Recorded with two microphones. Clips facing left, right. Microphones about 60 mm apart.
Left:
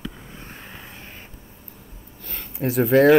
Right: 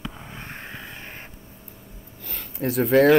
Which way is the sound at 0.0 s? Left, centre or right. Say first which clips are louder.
Right 1 dB; right.